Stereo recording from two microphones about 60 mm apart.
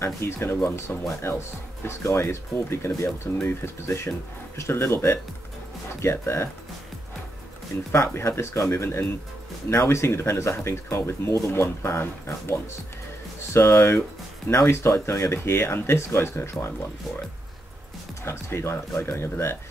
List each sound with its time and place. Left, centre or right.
0.0 s speech: left
7.9 s speech: left
18.2 s speech: left